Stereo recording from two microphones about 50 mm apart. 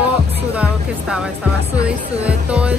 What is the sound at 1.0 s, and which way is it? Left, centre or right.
Speech, centre.